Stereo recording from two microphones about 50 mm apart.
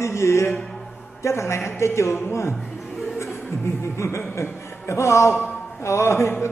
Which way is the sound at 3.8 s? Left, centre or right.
Left.